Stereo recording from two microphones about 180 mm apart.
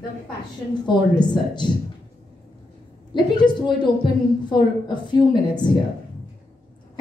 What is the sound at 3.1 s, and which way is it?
A woman's voice, 25° left (ahead or behind).